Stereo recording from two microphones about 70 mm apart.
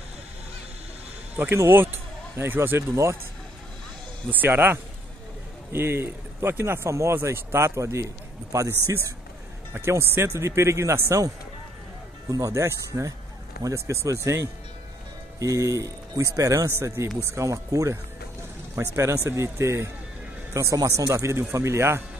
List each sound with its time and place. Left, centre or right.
1.3 s a man's voice: right
4.3 s a man's voice: right
12.3 s speech: right
12.6 s a man's voice: right
16.6 s a man's voice: right
17.5 s speech: right
18.8 s a man's voice: right
20.7 s speech: right